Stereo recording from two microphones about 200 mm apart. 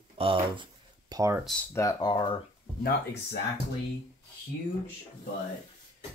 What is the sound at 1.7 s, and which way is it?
Speech, 15° left (ahead or behind).